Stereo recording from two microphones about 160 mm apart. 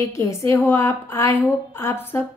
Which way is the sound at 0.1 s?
15° left (ahead or behind).